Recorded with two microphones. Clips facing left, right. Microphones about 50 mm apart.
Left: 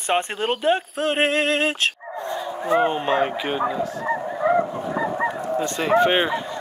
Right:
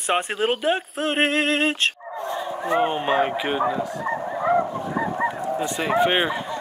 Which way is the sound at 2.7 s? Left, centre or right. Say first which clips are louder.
Left 1 dB; centre.